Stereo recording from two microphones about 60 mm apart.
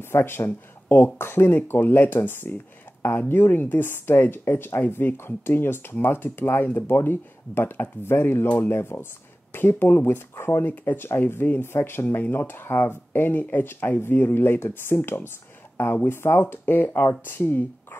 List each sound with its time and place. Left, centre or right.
0.0 s speech: left
10.7 s speech: left